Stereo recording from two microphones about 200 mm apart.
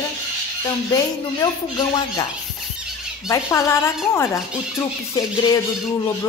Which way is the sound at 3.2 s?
15° left (ahead or behind).